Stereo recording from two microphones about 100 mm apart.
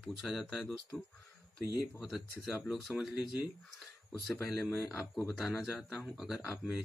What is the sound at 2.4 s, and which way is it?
Speech, 10° right (ahead or behind).